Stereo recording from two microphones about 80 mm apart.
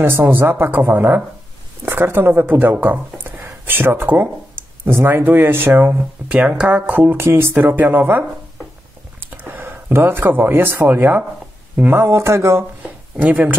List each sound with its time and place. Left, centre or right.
0.0 s speech: right
7.0 s speech: right
9.6 s speech: right
12.0 s speech: right
12.8 s a sound: centre